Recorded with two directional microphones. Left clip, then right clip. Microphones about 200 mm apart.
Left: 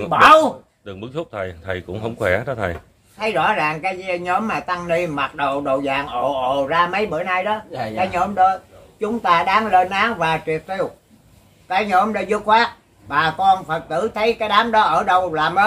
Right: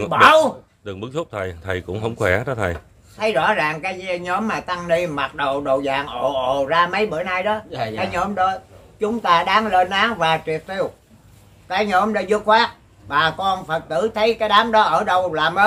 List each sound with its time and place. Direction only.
0.1 s speech: centre (ahead or behind)
0.8 s a man's voice: 35° right (ahead or behind)
3.2 s speech: 5° left (ahead or behind)